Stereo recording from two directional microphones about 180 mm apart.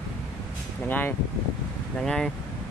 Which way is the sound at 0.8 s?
10° left (ahead or behind).